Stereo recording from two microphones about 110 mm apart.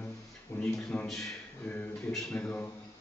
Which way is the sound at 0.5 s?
25° left (ahead or behind).